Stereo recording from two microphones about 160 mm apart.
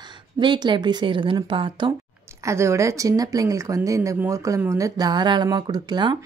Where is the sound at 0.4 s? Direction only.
30° right (ahead or behind).